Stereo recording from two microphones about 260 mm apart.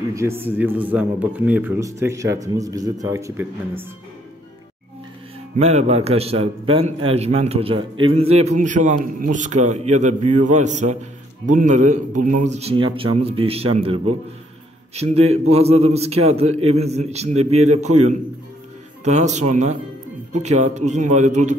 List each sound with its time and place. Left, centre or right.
0.1 s a man's voice: centre
5.6 s a man's voice: right
12.8 s a man's voice: right